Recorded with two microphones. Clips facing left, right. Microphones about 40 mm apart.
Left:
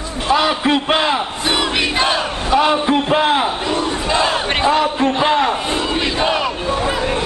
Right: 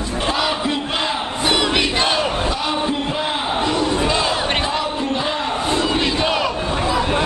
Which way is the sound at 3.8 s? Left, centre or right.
Centre.